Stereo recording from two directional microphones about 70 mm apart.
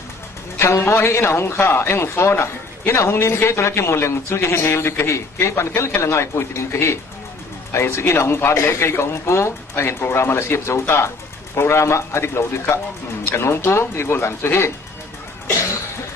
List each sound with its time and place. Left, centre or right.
0.6 s a man's voice: left